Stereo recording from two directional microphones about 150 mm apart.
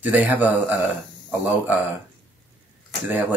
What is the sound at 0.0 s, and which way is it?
Speech, 10° right (ahead or behind).